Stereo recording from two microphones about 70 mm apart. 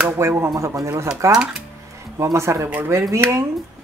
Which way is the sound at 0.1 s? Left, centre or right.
Right.